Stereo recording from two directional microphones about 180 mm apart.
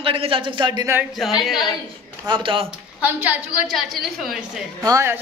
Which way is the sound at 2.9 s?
10° right (ahead or behind).